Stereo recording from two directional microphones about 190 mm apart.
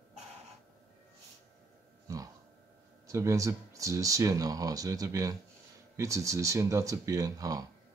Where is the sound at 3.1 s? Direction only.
15° right (ahead or behind).